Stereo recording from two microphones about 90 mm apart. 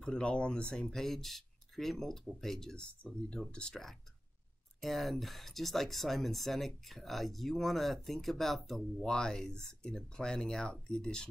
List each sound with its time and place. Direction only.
0.0 s speech: 10° left (ahead or behind)